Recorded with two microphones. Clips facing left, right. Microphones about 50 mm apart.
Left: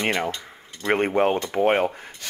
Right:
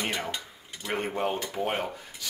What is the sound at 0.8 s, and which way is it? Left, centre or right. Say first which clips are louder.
Speech: left 9 dB; left.